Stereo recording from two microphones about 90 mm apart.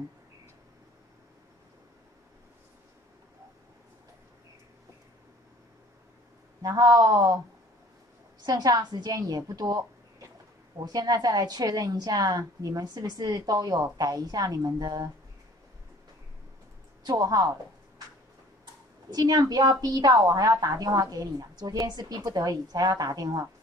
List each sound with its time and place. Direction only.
6.6 s a woman's voice: 45° right (ahead or behind)
8.5 s a woman's voice: 50° right (ahead or behind)
9.5 s a sound: 40° right (ahead or behind)
10.8 s a woman's voice: 45° right (ahead or behind)
17.0 s a woman's voice: 45° right (ahead or behind)
19.0 s a woman's voice: 50° right (ahead or behind)